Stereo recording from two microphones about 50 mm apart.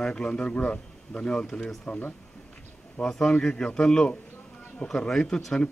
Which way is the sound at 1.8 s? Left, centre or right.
Left.